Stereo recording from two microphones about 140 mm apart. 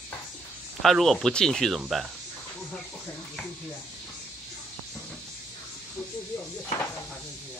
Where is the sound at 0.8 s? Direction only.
Centre (ahead or behind).